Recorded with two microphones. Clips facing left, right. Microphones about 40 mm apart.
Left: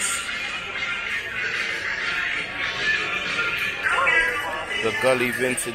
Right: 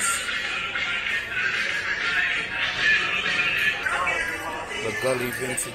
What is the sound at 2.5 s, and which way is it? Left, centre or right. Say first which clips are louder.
Music: right 3 dB; right.